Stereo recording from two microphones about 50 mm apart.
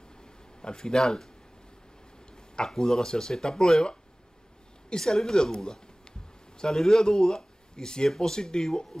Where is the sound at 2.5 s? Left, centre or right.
Centre.